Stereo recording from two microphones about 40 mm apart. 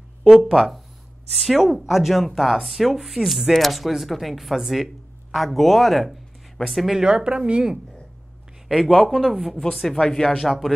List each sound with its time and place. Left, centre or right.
0.3 s speech: centre
7.0 s speech: right
9.0 s speech: centre